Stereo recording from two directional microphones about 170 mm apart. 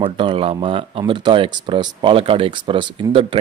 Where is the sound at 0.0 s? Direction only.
30° right (ahead or behind).